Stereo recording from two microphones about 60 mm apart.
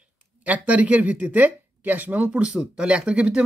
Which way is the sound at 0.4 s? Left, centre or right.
Right.